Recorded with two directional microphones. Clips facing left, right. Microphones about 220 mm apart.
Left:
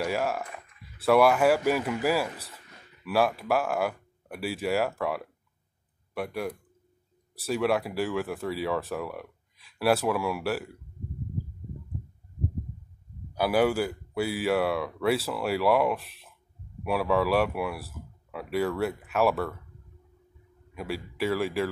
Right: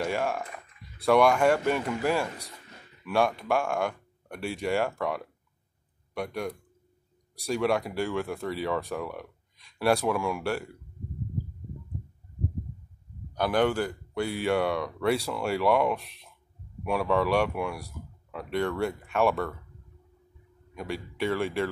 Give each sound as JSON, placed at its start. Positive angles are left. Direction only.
{"t": 0.0, "sound": "speech", "side_deg": 5}
{"t": 13.3, "sound": "speech", "side_deg": 5}
{"t": 20.7, "sound": "speech", "side_deg": 5}